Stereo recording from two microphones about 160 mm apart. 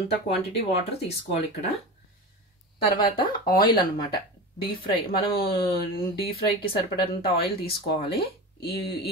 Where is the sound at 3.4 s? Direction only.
65° left (ahead or behind).